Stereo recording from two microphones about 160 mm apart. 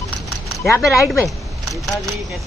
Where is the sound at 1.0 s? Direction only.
Centre (ahead or behind).